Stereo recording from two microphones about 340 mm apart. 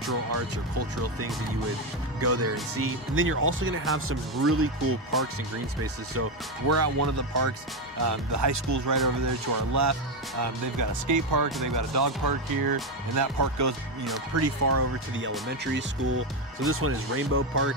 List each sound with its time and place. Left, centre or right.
0.7 s speech: right
6.7 s speech: right
14.3 s speech: right